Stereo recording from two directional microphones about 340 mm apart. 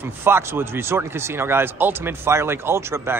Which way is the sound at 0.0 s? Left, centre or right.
Centre.